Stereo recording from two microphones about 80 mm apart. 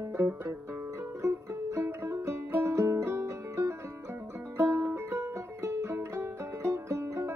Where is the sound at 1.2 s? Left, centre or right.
Right.